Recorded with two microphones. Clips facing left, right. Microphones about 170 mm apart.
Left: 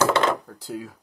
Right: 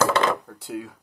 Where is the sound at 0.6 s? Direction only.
Centre (ahead or behind).